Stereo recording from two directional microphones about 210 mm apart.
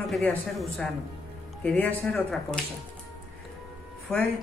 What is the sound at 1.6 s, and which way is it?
Speech, 5° left (ahead or behind).